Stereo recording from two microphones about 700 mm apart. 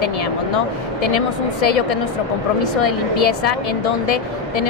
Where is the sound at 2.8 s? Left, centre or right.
Left.